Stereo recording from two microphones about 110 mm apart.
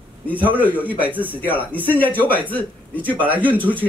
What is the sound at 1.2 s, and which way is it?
Speech, 15° left (ahead or behind).